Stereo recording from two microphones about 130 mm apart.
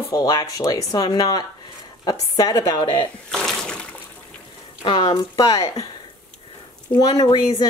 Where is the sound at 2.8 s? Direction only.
40° left (ahead or behind).